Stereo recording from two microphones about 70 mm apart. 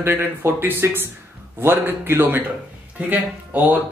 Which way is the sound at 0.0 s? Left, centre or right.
Right.